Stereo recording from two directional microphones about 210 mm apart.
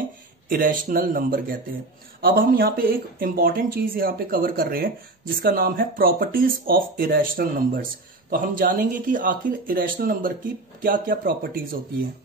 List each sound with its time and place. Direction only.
0.5 s speech: 40° right (ahead or behind)